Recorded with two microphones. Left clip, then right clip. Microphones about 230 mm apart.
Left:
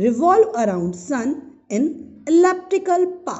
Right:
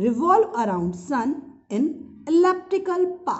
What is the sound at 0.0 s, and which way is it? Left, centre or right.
A woman's voice, centre.